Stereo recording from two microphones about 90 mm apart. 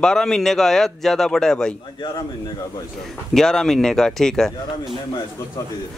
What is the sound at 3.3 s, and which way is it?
A man's voice, 5° left (ahead or behind).